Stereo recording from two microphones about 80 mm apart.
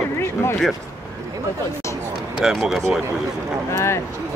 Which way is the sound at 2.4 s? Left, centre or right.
Centre.